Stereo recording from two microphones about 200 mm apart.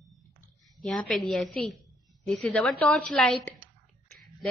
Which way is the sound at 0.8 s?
Centre (ahead or behind).